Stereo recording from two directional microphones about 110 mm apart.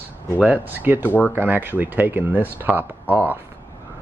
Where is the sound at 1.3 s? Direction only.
20° right (ahead or behind).